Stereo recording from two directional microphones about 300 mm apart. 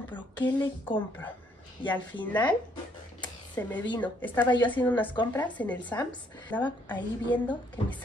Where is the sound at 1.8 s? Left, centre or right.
Centre.